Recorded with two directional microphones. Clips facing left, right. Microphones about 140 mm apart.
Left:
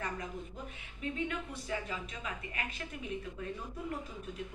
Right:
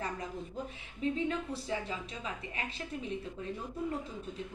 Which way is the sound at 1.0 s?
30° right (ahead or behind).